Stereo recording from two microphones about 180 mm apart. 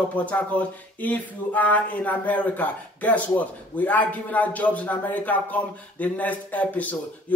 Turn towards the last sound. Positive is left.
turn(degrees=10)  # may be behind; listen again after turning